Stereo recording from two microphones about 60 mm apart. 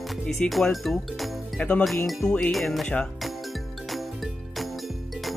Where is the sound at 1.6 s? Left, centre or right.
Left.